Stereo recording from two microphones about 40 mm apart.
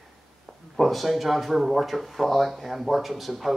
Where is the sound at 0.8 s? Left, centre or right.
Centre.